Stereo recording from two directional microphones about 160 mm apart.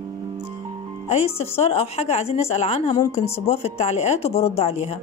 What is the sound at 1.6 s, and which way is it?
A woman's voice, 40° left (ahead or behind).